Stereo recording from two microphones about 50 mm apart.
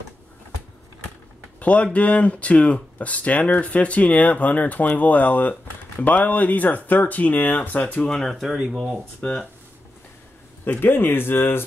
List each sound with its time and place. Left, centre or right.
1.6 s speech: left
8.1 s speech: centre
9.2 s speech: centre
10.6 s speech: left